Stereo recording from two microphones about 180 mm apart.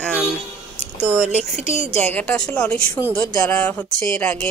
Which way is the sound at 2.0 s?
10° left (ahead or behind).